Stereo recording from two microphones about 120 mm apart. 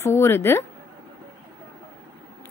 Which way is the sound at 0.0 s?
20° left (ahead or behind).